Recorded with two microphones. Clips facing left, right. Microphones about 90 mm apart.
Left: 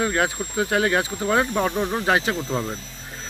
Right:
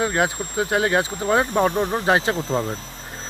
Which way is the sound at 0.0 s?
25° right (ahead or behind).